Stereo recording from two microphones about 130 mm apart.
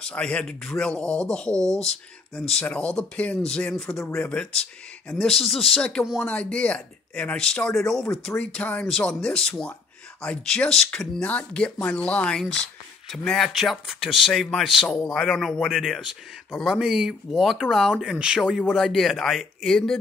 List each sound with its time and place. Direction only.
0.0 s speech: 10° left (ahead or behind)